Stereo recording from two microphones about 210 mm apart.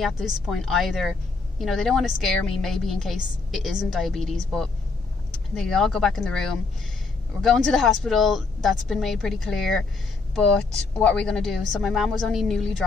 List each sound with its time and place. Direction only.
0.0 s a woman's voice: centre (ahead or behind)
5.5 s a woman's voice: centre (ahead or behind)